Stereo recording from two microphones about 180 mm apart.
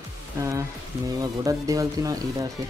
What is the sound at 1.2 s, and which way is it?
Speech, 20° right (ahead or behind).